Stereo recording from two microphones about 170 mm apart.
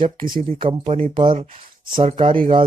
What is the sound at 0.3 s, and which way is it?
Speech, 30° right (ahead or behind).